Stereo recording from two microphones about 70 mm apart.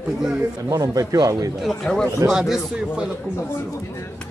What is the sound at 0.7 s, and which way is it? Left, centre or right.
Speech, right.